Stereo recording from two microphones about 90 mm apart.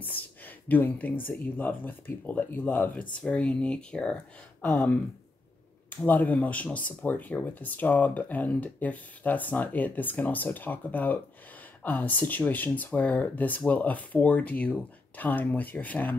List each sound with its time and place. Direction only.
0.0 s a sound: 20° left (ahead or behind)
1.6 s speech: 20° left (ahead or behind)
6.0 s speech: 20° left (ahead or behind)